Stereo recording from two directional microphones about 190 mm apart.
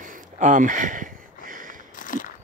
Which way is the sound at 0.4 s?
40° right (ahead or behind).